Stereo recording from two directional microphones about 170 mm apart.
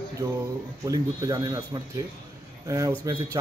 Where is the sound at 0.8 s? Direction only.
20° right (ahead or behind).